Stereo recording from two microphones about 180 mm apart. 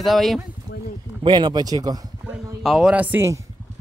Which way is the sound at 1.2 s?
25° right (ahead or behind).